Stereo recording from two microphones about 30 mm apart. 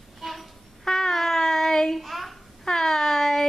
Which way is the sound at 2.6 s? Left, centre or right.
Centre.